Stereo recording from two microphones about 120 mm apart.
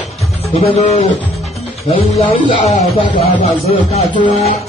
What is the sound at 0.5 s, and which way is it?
Speech, 60° left (ahead or behind).